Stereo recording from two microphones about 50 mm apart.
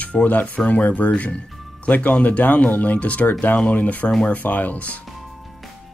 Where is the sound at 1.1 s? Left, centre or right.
Left.